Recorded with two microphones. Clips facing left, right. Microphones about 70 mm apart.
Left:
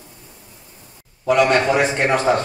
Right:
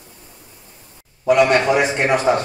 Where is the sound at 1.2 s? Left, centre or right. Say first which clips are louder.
Right 1 dB; centre.